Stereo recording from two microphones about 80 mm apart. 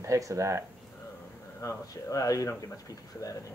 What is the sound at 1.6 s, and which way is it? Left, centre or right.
A woman's voice, left.